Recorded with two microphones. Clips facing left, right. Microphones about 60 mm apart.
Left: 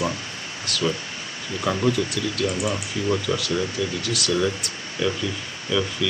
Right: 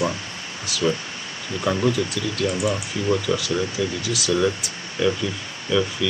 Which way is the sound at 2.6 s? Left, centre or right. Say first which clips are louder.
Right 2 dB; right.